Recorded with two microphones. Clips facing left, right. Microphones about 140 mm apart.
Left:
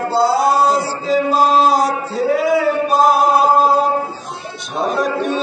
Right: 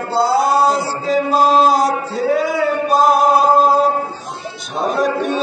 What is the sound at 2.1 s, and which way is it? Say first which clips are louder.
Male singing: left 3 dB; centre (ahead or behind).